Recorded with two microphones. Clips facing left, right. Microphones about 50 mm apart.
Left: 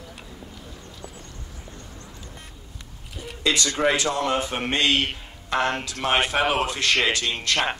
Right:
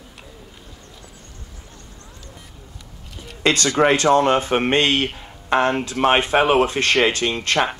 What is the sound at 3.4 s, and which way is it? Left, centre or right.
A man's voice, right.